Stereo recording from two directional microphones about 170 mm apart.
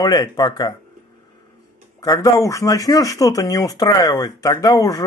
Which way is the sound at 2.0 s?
20° left (ahead or behind).